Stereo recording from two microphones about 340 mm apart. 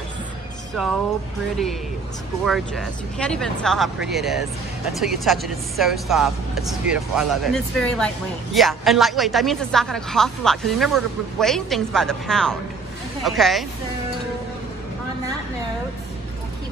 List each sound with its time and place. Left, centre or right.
0.8 s speech: centre
2.4 s speech: centre